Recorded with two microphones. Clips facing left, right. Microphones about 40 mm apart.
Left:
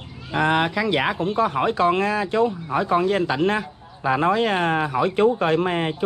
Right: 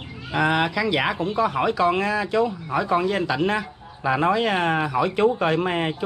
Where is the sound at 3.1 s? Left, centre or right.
Left.